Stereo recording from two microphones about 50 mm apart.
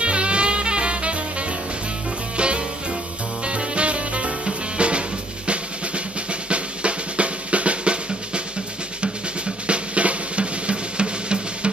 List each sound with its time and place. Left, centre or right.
0.0 s music: right
2.3 s music: right
6.5 s drum: right
9.7 s drum: right